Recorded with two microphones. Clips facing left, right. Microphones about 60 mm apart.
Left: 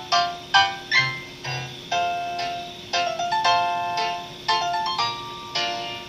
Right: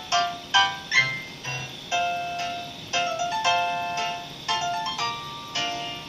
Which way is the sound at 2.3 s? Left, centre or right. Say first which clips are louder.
Left 2 dB; left.